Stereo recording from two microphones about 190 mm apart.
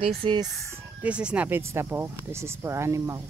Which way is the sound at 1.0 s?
5° right (ahead or behind).